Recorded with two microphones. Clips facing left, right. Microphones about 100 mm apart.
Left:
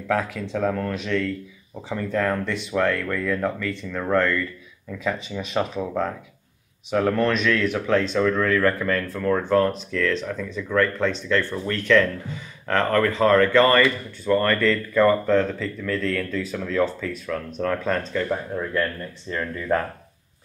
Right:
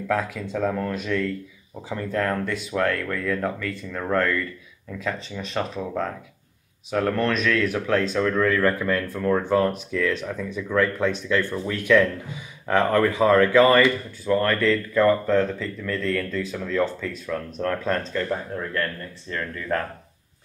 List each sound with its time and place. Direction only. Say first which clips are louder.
0.1 s speech: left 1 dB; centre (ahead or behind); by 19.8 s 20° left (ahead or behind)